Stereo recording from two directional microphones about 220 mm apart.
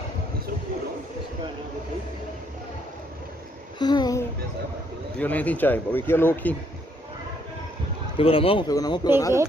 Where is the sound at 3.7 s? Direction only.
20° left (ahead or behind).